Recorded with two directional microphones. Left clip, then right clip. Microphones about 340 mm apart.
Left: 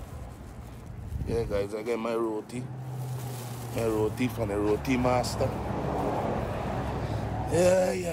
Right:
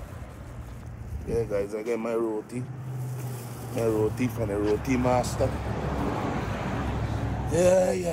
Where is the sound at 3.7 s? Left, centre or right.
Centre.